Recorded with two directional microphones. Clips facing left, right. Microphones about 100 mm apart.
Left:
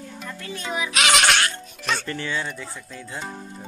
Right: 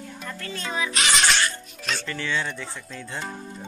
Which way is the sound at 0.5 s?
15° left (ahead or behind).